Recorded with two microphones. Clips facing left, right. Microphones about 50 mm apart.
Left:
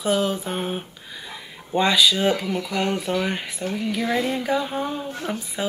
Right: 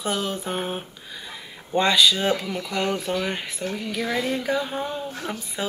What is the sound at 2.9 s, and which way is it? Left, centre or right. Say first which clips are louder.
Music: left 2 dB; centre.